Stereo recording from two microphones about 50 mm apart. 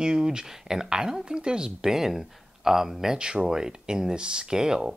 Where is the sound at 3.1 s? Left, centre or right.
Centre.